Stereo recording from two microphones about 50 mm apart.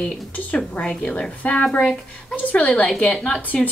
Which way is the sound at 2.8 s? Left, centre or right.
Centre.